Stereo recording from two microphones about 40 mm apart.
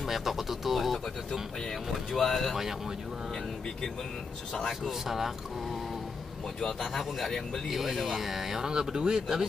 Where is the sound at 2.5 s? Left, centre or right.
Centre.